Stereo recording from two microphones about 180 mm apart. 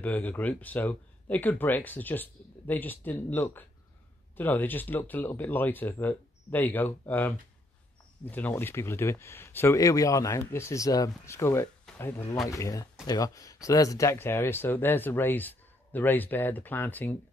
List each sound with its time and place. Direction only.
0.0 s speech: 10° left (ahead or behind)